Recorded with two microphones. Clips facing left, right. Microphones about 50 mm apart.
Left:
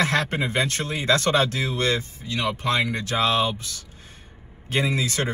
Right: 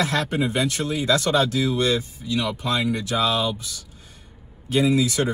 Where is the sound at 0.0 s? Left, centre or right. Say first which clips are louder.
Even; left.